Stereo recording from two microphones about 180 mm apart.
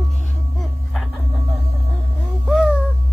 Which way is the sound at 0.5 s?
Centre (ahead or behind).